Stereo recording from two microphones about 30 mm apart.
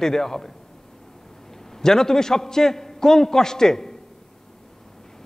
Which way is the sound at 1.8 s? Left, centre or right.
Centre.